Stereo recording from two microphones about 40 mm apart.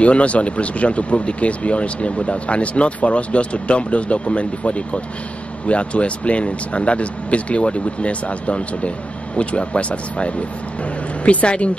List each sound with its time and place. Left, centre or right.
0.0 s a woman's voice: left